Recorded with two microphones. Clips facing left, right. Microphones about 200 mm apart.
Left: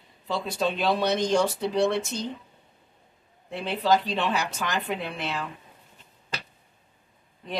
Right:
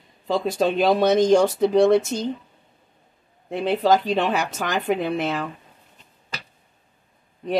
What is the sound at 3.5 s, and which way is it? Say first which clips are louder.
Speech: right 5 dB; 45° right (ahead or behind).